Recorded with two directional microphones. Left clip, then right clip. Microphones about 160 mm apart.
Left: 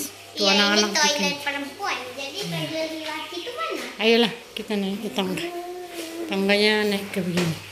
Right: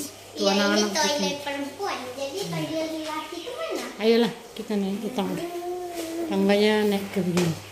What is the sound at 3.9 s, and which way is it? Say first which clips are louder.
A woman's voice: left 2 dB; 5° right (ahead or behind).